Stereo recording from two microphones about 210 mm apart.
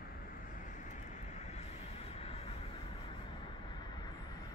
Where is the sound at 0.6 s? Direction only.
35° left (ahead or behind).